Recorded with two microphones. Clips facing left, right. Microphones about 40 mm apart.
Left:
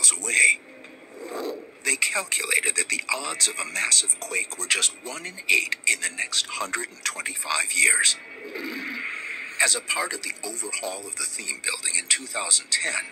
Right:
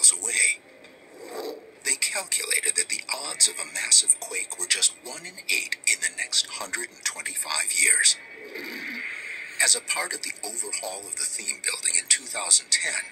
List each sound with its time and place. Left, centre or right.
0.0 s a man's voice: left
8.5 s a sound: centre
10.0 s speech: left
10.4 s a man's voice: left
11.4 s speech: centre